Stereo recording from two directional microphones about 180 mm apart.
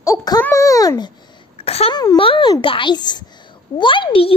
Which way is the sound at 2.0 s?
25° left (ahead or behind).